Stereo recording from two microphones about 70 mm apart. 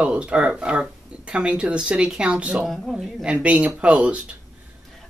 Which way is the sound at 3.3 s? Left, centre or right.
Centre.